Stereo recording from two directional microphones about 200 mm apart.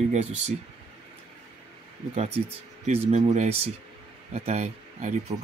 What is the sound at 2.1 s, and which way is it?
Speech, 30° right (ahead or behind).